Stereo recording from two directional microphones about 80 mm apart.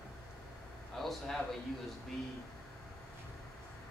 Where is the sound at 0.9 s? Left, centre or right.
Centre.